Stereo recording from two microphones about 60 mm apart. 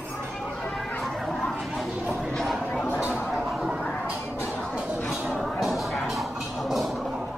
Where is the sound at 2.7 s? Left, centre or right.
Left.